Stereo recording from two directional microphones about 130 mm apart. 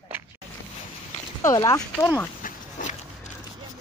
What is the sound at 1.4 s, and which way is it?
Speech, 25° left (ahead or behind).